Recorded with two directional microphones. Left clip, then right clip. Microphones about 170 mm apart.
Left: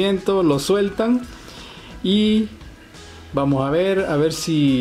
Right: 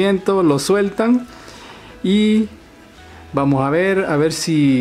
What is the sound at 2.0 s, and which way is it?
Speech, 60° right (ahead or behind).